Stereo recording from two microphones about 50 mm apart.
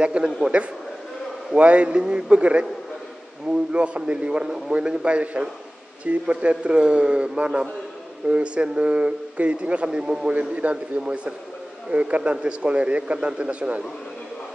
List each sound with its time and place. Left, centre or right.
0.0 s speech: right